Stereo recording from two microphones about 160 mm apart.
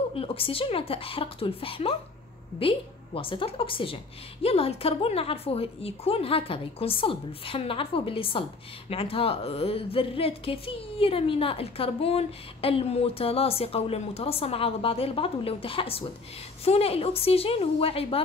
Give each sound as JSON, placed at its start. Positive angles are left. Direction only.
{"t": 0.1, "sound": "a woman's voice", "side_deg": 35}